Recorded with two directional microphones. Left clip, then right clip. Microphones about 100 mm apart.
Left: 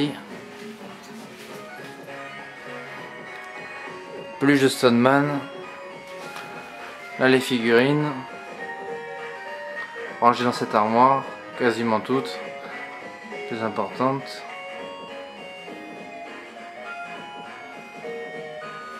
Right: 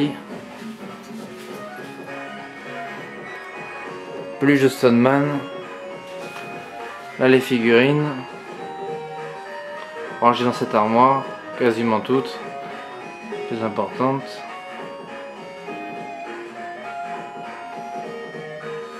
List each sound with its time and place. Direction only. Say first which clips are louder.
4.4 s a man's voice: right 2 dB; 15° left (ahead or behind)
7.2 s a man's voice: right 3 dB; 15° left (ahead or behind)
10.2 s speech: right 2 dB; 20° left (ahead or behind)
13.5 s speech: right 2 dB; 20° left (ahead or behind)